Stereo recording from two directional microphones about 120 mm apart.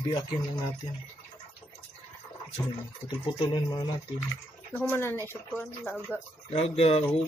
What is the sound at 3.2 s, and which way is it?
Speech, 35° left (ahead or behind).